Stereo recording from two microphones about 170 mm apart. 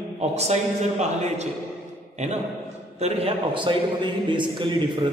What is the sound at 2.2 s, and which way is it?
A man's voice, 45° right (ahead or behind).